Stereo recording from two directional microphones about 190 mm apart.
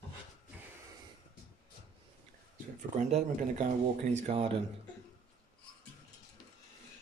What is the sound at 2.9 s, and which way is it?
Speech, 35° right (ahead or behind).